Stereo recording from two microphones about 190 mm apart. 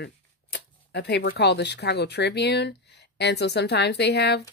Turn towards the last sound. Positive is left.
turn(degrees=60)  # may be behind; listen again after turning